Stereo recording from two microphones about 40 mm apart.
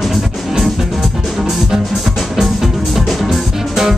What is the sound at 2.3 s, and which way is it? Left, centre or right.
Music, centre.